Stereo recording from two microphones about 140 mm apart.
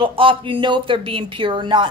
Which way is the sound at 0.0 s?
40° right (ahead or behind).